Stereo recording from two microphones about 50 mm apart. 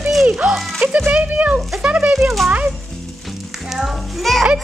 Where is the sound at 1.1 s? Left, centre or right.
Right.